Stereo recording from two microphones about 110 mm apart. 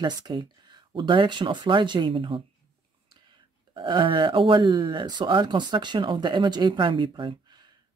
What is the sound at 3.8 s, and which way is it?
Speech, 45° right (ahead or behind).